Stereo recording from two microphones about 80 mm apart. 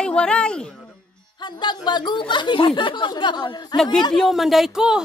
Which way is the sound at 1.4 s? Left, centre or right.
Left.